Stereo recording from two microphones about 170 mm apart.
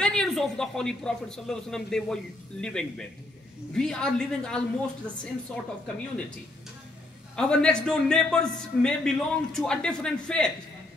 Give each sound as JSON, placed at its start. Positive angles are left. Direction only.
{"t": 0.0, "sound": "a man's voice", "side_deg": 5}
{"t": 7.3, "sound": "speech", "side_deg": 5}